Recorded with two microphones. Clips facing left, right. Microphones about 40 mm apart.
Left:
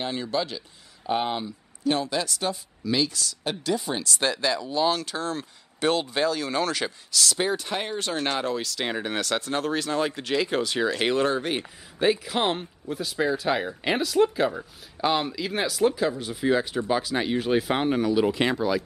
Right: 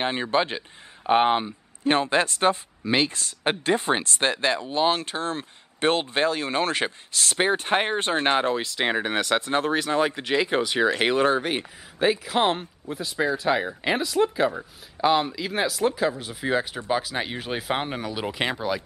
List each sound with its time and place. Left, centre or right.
0.0 s speech: right; by 11.4 s centre
11.4 s speech: centre